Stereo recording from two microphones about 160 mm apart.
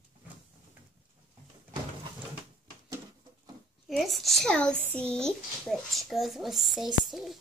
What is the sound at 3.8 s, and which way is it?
A woman's voice, centre (ahead or behind).